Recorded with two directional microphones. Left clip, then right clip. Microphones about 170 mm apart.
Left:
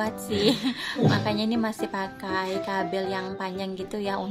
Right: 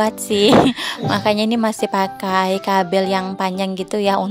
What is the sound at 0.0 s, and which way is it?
Speech, 55° right (ahead or behind).